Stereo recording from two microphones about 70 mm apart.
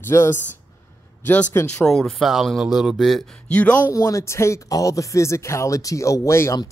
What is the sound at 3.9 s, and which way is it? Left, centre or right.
Speech, left.